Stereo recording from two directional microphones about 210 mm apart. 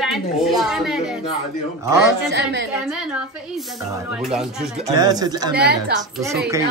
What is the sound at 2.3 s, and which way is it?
Speech, 55° right (ahead or behind).